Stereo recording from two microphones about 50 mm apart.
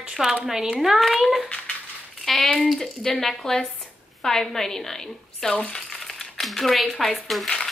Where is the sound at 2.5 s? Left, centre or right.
Centre.